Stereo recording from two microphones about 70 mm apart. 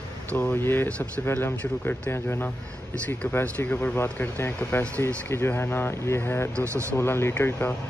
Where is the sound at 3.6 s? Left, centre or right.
Left.